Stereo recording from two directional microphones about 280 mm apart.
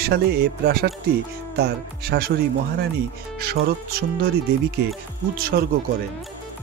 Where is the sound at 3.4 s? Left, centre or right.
Right.